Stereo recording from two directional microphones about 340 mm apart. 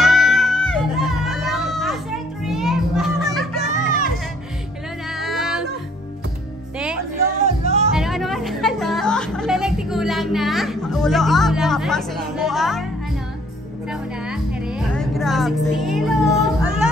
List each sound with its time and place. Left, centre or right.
0.0 s music: centre
2.4 s children playing: centre
3.6 s music: right
5.2 s music: centre
7.2 s music: centre
7.9 s music: centre
14.3 s music: centre